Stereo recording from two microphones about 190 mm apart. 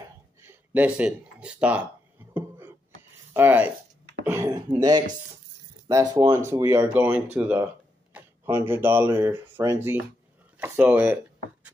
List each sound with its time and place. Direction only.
0.4 s speech: 10° right (ahead or behind)
3.3 s speech: 10° right (ahead or behind)